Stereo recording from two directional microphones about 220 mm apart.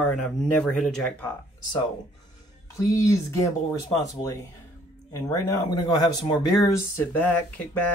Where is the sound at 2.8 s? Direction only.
15° left (ahead or behind).